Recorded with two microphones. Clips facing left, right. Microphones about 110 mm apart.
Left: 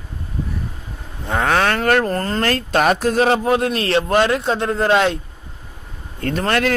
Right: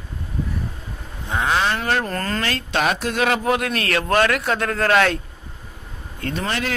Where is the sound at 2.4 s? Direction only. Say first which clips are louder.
Left 6 dB; 45° left (ahead or behind); by 4.0 s 30° left (ahead or behind).